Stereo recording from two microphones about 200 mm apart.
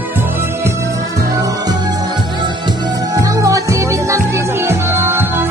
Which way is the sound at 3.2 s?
15° right (ahead or behind).